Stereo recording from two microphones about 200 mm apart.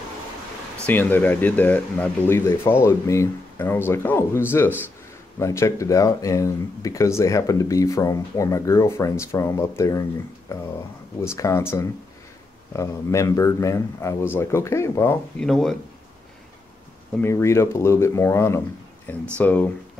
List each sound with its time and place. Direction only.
0.8 s speech: 10° left (ahead or behind)
11.1 s speech: 15° left (ahead or behind)
17.2 s speech: 15° left (ahead or behind)